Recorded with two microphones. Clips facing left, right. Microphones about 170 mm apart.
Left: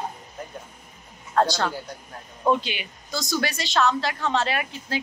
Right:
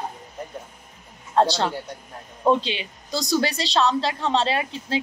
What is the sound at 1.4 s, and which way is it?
A woman's voice, 30° right (ahead or behind).